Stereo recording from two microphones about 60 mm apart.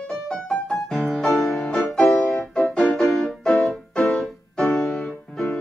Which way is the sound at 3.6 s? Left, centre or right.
Centre.